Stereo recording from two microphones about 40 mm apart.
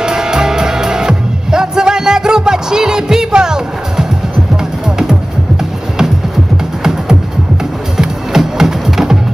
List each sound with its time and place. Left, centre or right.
0.0 s music: centre
6.8 s music: centre